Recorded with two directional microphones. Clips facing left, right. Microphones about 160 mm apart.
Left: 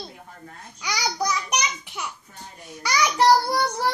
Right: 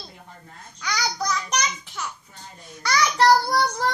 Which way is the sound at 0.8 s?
10° left (ahead or behind).